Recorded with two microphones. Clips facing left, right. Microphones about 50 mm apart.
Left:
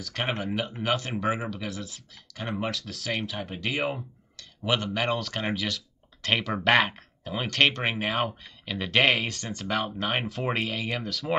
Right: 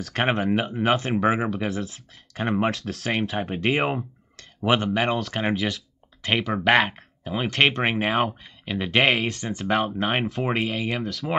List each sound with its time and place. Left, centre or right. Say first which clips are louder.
0.1 s speech: right 7 dB; right
4.7 s speech: right 4 dB; right
5.0 s speech: right 4 dB; centre
9.7 s speech: right 5 dB; right
10.2 s speech: right 4 dB; centre